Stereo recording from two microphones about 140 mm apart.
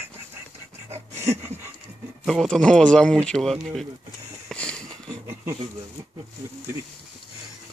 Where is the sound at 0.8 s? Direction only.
20° right (ahead or behind).